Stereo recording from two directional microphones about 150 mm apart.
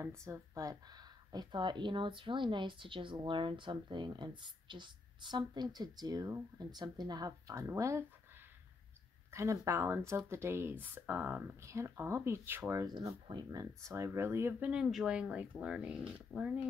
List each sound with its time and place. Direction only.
0.2 s speech: 20° right (ahead or behind)
9.3 s speech: 20° right (ahead or behind)
12.8 s speech: 30° right (ahead or behind); by 16.5 s 5° right (ahead or behind)